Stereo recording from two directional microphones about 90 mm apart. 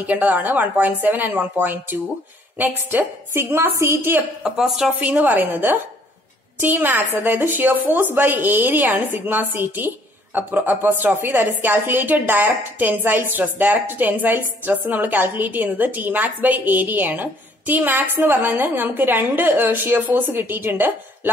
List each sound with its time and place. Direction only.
0.0 s a woman's voice: 15° right (ahead or behind)
4.4 s speech: 5° right (ahead or behind)
5.0 s a woman's voice: 15° right (ahead or behind)